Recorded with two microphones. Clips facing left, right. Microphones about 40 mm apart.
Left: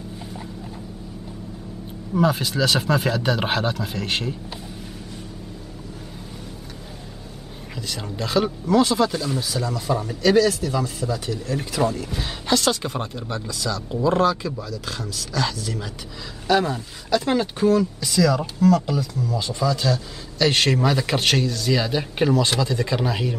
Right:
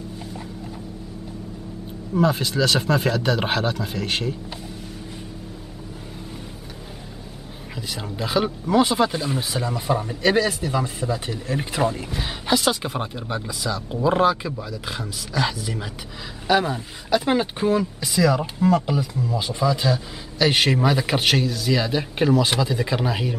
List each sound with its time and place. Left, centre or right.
2.1 s speech: centre
7.7 s speech: centre; by 12.1 s right
12.1 s speech: centre